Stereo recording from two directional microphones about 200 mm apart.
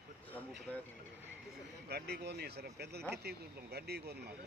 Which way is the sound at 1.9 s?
55° right (ahead or behind).